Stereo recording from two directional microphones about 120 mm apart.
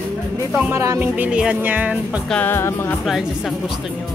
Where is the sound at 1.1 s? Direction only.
10° right (ahead or behind).